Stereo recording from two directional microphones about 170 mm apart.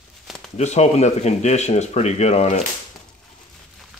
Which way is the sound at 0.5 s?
40° left (ahead or behind).